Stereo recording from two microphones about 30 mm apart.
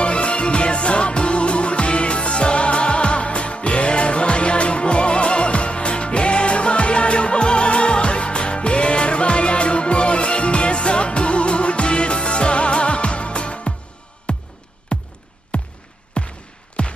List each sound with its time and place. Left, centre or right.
0.0 s music: left
15.5 s a sound: left
16.8 s music: left